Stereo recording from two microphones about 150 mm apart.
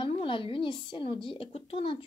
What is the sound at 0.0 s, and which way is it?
Speech, 35° left (ahead or behind).